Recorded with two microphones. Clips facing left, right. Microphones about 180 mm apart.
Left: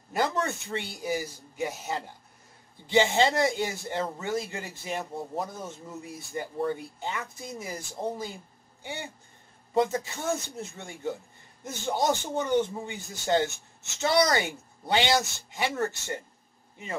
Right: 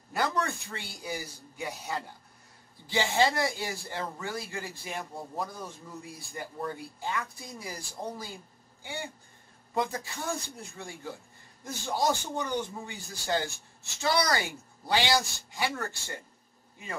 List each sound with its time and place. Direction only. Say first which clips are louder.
0.1 s speech: left 2 dB; 20° left (ahead or behind)
9.8 s speech: left 6 dB; 20° left (ahead or behind)